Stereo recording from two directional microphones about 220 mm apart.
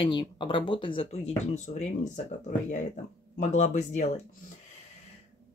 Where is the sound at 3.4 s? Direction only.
30° left (ahead or behind).